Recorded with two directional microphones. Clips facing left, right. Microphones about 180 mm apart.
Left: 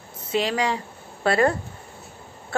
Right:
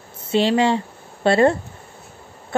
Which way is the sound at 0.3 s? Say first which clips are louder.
Right 6 dB; 30° right (ahead or behind).